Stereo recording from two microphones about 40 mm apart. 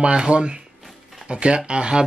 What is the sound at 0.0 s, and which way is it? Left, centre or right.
Speech, right.